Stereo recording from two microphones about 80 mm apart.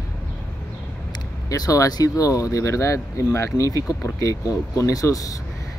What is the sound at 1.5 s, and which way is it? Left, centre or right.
Speech, left.